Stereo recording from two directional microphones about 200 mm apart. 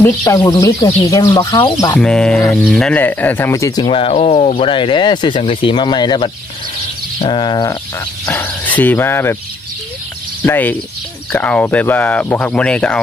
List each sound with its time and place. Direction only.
0.0 s speech: 15° left (ahead or behind)
2.0 s speech: 5° left (ahead or behind); by 7.8 s 20° left (ahead or behind)
8.3 s speech: 10° left (ahead or behind)
10.4 s speech: 10° left (ahead or behind)